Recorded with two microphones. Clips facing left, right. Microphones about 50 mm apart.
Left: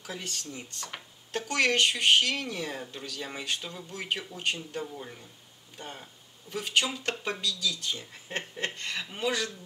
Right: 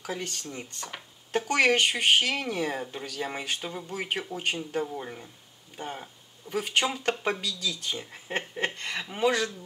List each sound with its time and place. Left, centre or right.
0.2 s speech: centre